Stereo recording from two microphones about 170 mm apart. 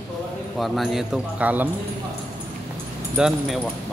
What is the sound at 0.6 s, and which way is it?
Speech, centre (ahead or behind).